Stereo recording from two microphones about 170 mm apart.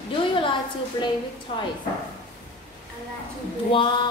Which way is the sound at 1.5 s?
30° left (ahead or behind).